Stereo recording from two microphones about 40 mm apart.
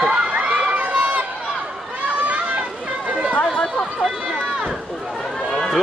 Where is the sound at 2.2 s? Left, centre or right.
Right.